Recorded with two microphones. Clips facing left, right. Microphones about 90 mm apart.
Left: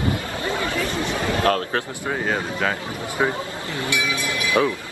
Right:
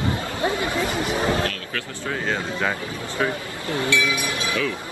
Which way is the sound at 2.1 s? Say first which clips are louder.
Even; 15° left (ahead or behind).